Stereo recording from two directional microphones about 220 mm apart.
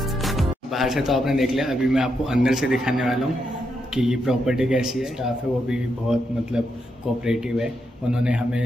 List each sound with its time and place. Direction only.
0.2 s a man's voice: centre (ahead or behind)